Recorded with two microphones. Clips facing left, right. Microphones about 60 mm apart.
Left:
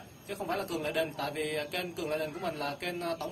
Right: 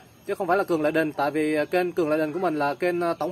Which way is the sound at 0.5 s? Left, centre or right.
Right.